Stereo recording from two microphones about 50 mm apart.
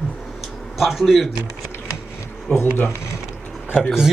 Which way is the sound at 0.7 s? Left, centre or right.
Centre.